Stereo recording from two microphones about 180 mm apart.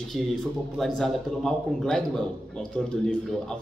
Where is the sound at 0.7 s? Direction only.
Centre (ahead or behind).